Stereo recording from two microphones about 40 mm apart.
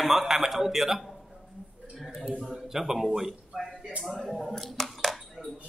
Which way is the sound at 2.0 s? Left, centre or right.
Centre.